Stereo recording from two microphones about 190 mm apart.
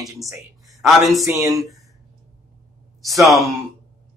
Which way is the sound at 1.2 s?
15° right (ahead or behind).